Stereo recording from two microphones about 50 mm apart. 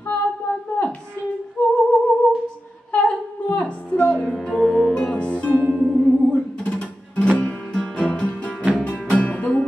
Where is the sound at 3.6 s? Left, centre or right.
Left.